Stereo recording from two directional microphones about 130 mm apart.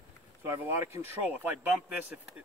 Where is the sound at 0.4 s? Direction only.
20° right (ahead or behind).